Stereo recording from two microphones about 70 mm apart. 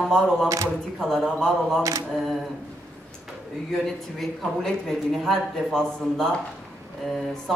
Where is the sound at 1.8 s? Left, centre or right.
Right.